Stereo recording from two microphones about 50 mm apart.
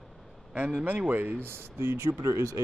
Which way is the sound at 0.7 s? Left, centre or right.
Right.